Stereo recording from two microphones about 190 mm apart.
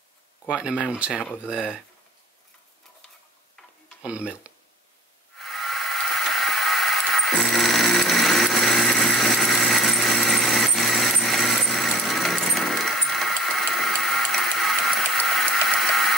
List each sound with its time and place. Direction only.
0.5 s speech: 5° right (ahead or behind)
4.0 s speech: 5° right (ahead or behind)
5.4 s a sound: centre (ahead or behind)